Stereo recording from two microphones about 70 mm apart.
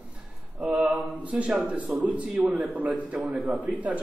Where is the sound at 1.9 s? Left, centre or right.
Centre.